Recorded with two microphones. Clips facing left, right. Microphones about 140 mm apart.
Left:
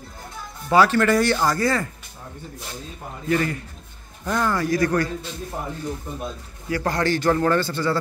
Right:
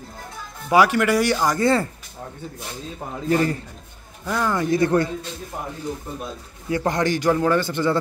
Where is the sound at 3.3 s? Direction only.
30° right (ahead or behind).